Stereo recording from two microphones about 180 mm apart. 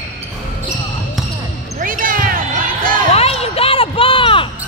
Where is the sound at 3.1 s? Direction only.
35° left (ahead or behind).